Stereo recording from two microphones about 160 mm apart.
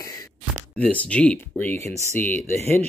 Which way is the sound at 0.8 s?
10° left (ahead or behind).